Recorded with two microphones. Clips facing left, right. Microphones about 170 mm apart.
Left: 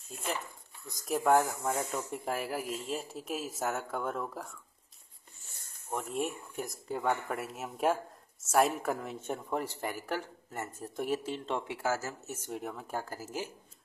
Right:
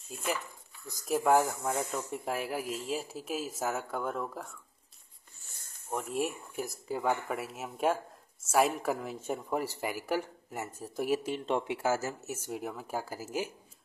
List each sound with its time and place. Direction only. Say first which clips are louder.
0.8 s speech: right 1 dB; centre (ahead or behind)
5.9 s speech: right 1 dB; centre (ahead or behind)
11.2 s speech: right 4 dB; 15° right (ahead or behind)
12.4 s speech: even; 5° right (ahead or behind)